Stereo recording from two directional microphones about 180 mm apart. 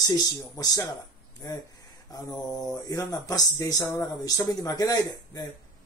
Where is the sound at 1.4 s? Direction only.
20° left (ahead or behind).